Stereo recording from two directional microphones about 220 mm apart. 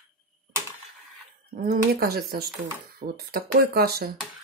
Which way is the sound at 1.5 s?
40° right (ahead or behind).